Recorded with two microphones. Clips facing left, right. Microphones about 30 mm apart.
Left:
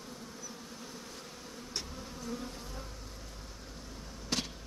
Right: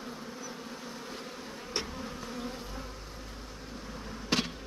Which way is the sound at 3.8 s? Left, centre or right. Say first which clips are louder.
Right 6 dB; right.